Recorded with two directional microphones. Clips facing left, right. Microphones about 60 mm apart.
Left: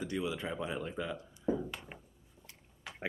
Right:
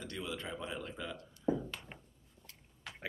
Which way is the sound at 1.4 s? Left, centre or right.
Centre.